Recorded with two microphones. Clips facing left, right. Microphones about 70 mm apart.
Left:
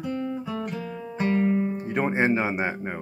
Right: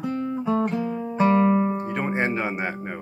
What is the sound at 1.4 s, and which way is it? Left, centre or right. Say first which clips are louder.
Music: right 4 dB; right.